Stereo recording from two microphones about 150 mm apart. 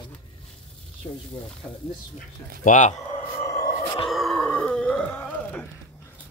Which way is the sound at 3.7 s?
35° left (ahead or behind).